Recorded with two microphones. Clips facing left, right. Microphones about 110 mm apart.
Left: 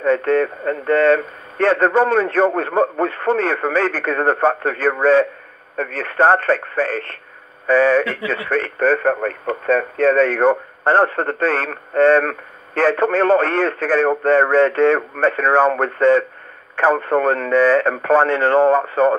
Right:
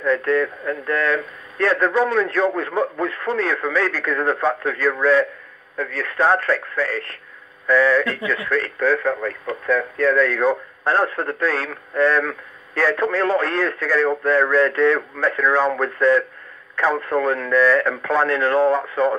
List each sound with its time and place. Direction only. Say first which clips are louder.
0.0 s a man's voice: left 3 dB; 45° left (ahead or behind)